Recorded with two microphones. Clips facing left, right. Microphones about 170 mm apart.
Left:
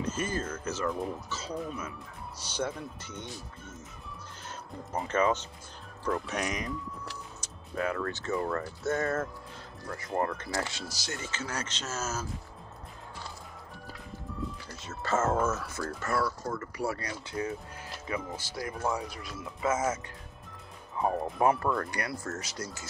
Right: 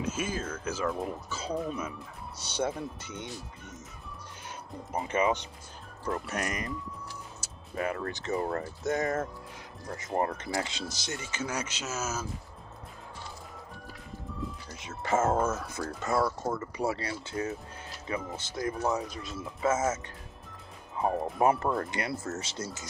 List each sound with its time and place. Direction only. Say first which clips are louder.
0.0 s speech: even; 10° right (ahead or behind)
4.9 s speech: even; 10° right (ahead or behind)
6.1 s speech: right 1 dB; centre (ahead or behind)
7.4 s music: even; 5° right (ahead or behind)
8.0 s speech: even; 20° right (ahead or behind)
14.8 s speech: right 2 dB; 15° right (ahead or behind)
21.4 s speech: right 1 dB; 25° right (ahead or behind)